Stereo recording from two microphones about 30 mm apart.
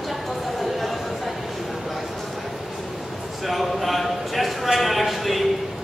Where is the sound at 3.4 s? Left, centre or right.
Centre.